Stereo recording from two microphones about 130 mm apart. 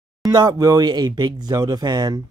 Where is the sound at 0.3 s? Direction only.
35° right (ahead or behind).